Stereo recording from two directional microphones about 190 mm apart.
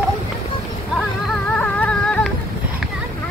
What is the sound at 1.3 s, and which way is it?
Music, 5° left (ahead or behind).